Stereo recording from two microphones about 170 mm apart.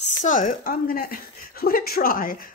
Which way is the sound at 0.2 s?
50° left (ahead or behind).